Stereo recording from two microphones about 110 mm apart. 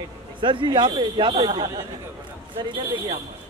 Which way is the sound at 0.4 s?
45° right (ahead or behind).